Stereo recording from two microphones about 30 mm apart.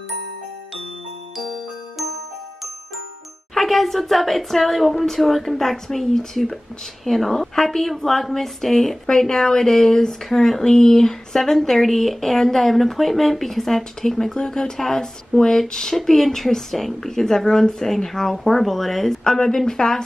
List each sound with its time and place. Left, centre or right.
3.5 s a woman's voice: centre
9.3 s speech: left
14.3 s speech: left
15.9 s a woman's voice: centre
19.2 s speech: left